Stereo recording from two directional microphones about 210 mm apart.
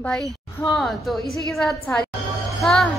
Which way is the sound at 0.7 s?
Centre (ahead or behind).